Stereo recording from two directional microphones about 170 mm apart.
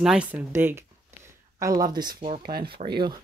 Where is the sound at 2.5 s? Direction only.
65° right (ahead or behind).